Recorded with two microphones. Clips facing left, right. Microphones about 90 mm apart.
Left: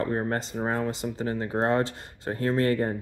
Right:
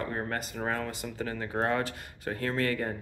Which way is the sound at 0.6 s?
25° left (ahead or behind).